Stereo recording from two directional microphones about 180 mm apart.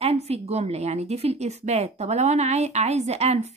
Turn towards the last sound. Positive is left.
turn(degrees=-35)  # may be behind; listen again after turning